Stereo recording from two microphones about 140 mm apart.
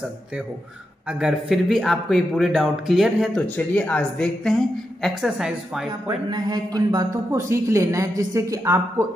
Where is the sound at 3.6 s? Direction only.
10° left (ahead or behind).